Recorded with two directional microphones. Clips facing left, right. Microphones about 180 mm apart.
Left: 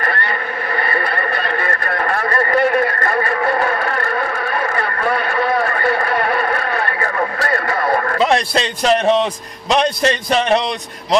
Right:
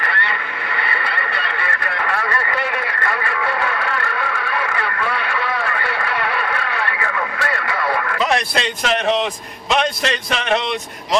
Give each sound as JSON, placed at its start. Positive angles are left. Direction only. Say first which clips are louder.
{"t": 0.0, "sound": "vehicle", "louder": "left 3 dB", "side_deg": 45}
{"t": 0.7, "sound": "radio", "louder": "left 5 dB", "side_deg": 45}
{"t": 8.2, "sound": "a man's voice", "louder": "left 3 dB", "side_deg": 30}